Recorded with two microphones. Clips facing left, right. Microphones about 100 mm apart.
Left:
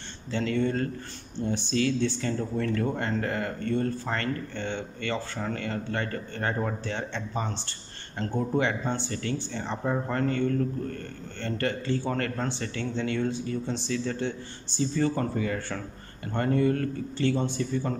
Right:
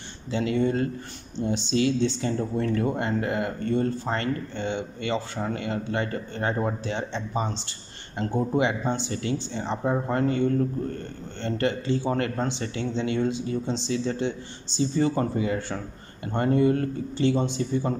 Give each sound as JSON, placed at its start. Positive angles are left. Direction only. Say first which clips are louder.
{"t": 0.3, "sound": "speech", "louder": "right 3 dB", "side_deg": -15}